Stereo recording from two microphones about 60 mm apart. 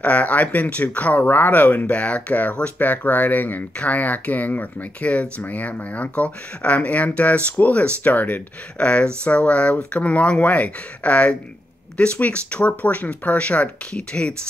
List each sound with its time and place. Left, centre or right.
0.0 s speech: left